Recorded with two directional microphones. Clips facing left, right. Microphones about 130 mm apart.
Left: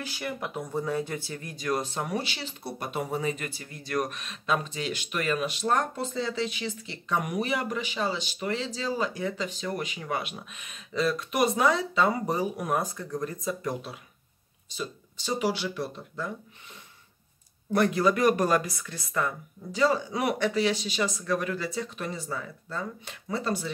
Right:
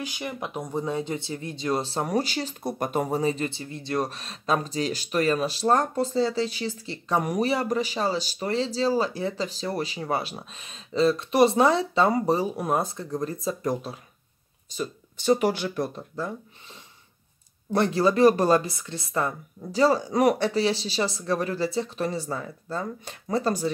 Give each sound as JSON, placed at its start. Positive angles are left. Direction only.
{"t": 0.0, "sound": "speech", "side_deg": -15}
{"t": 14.7, "sound": "speech", "side_deg": -50}
{"t": 17.7, "sound": "speech", "side_deg": -30}